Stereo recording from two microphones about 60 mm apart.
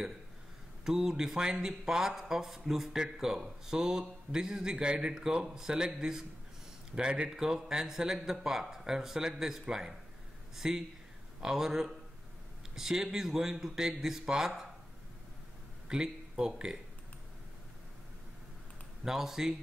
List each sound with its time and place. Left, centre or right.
0.8 s speech: centre
15.9 s speech: centre
19.0 s speech: centre